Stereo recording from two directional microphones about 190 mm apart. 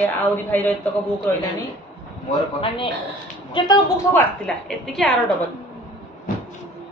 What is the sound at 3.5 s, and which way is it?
Speech, 25° left (ahead or behind).